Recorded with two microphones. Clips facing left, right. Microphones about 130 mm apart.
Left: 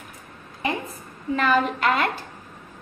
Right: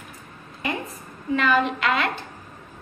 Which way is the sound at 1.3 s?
40° left (ahead or behind).